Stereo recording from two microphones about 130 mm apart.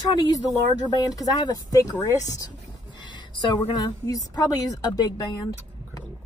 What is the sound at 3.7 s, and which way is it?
A woman's voice, 25° left (ahead or behind).